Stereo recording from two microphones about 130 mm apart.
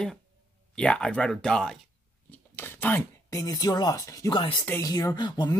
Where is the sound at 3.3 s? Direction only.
30° left (ahead or behind).